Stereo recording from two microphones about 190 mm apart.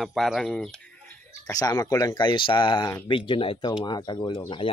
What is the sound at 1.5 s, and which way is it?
Speech, 20° left (ahead or behind).